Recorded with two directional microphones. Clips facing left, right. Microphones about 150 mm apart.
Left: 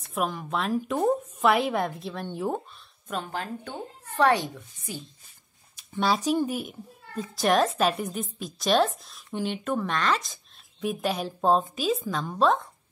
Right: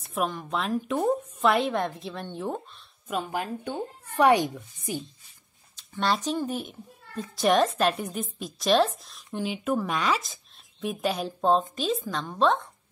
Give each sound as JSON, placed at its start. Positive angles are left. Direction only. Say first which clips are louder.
{"t": 0.1, "sound": "speech", "louder": "even", "side_deg": 0}
{"t": 3.1, "sound": "speech", "louder": "right 2 dB", "side_deg": -10}
{"t": 5.8, "sound": "speech", "louder": "left 1 dB", "side_deg": 5}